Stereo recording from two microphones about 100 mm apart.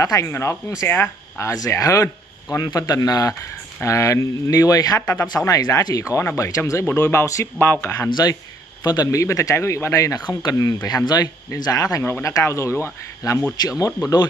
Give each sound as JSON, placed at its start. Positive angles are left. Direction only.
{"t": 0.0, "sound": "speech", "side_deg": 35}
{"t": 1.5, "sound": "speech", "side_deg": 35}
{"t": 8.8, "sound": "speech", "side_deg": 40}